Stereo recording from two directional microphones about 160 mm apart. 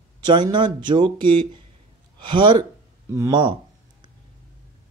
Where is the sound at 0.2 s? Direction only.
30° right (ahead or behind).